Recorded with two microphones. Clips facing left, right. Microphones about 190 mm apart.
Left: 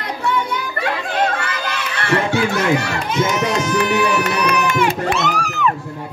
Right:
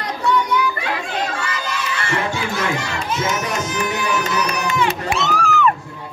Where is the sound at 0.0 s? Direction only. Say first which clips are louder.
Right 1 dB; 55° left (ahead or behind).